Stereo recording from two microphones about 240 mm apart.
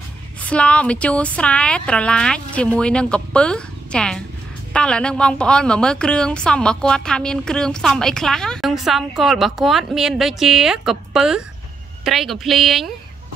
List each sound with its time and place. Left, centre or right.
0.4 s a woman's voice: centre